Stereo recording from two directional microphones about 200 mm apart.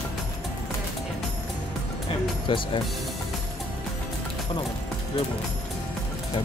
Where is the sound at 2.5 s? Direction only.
25° left (ahead or behind).